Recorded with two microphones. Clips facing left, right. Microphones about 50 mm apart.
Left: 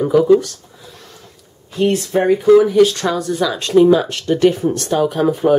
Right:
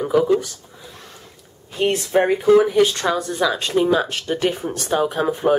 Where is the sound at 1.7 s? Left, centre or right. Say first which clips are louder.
Left 3 dB; centre.